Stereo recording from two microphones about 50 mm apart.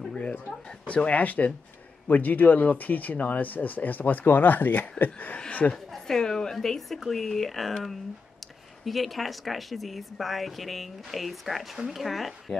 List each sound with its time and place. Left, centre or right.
0.1 s a sound: left
0.8 s speech: left
5.6 s a woman's voice: left
6.0 s speech: centre
8.8 s speech: centre